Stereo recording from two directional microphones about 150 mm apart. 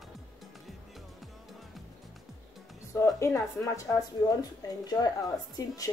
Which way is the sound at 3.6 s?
20° left (ahead or behind).